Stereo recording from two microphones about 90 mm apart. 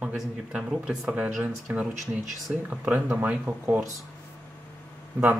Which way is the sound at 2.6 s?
20° right (ahead or behind).